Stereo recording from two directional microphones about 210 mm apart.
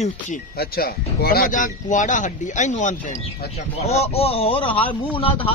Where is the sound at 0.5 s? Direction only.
45° left (ahead or behind).